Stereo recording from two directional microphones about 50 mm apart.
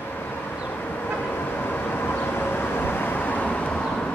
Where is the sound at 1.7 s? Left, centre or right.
Left.